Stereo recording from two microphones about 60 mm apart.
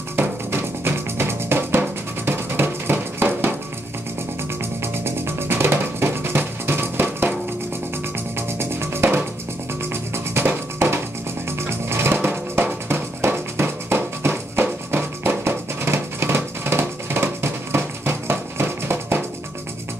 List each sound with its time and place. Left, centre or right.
0.1 s music: right
5.0 s music: right
8.4 s music: right
12.2 s drum: right
12.8 s music: right